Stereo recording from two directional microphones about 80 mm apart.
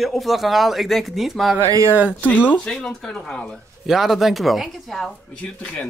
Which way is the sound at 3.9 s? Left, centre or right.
Centre.